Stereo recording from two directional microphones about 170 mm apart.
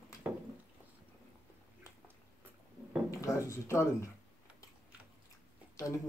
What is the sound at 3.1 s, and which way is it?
Speech, 20° left (ahead or behind).